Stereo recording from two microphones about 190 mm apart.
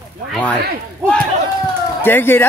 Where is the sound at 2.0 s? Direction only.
10° left (ahead or behind).